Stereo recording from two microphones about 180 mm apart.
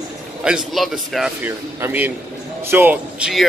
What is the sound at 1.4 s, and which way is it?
A man's voice, 10° right (ahead or behind).